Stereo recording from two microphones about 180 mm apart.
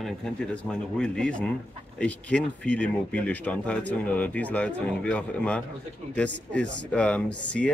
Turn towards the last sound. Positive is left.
turn(degrees=5)  # may be behind; listen again after turning